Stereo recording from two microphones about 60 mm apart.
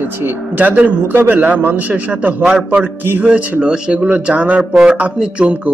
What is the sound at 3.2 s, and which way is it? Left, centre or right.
Speech, right.